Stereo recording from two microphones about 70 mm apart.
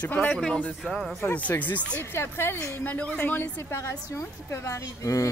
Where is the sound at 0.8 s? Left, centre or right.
Centre.